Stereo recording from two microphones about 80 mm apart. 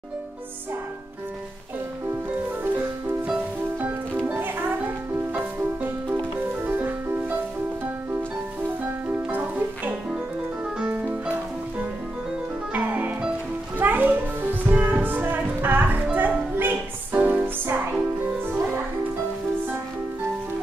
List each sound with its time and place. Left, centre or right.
2.6 s music: right
8.6 s music: right
12.7 s music: right